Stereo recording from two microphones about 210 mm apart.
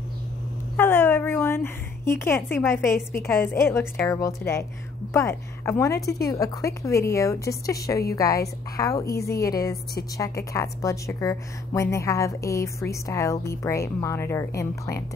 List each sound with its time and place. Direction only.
0.7 s a woman's voice: 10° left (ahead or behind)